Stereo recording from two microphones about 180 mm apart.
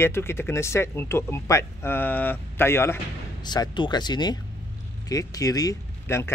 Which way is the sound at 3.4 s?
25° left (ahead or behind).